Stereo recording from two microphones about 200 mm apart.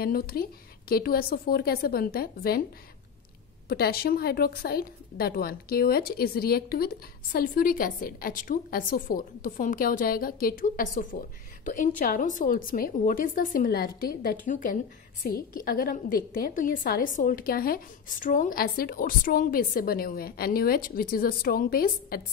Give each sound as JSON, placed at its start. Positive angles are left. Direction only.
{"t": 0.0, "sound": "a woman's voice", "side_deg": 50}
{"t": 3.6, "sound": "a woman's voice", "side_deg": 50}